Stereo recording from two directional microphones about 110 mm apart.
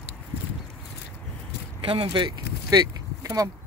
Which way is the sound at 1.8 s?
55° right (ahead or behind).